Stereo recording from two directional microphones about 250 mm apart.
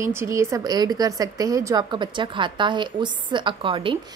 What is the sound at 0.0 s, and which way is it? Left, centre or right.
A woman's voice, centre.